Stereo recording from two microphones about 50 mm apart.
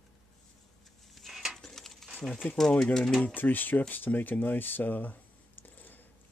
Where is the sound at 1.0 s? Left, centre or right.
Centre.